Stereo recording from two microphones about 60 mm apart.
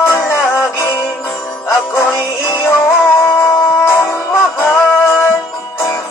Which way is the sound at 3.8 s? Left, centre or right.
Left.